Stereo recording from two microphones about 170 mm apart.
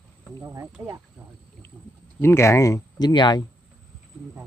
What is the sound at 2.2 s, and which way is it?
Speech, 15° left (ahead or behind).